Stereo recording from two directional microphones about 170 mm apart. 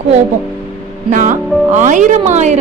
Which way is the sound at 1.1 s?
50° right (ahead or behind).